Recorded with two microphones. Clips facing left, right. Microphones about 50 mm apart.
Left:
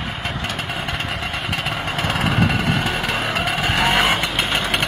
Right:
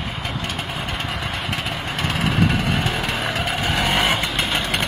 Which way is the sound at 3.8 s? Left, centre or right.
Left.